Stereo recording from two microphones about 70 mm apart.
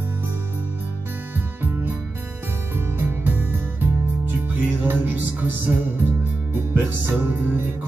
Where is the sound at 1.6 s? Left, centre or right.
Right.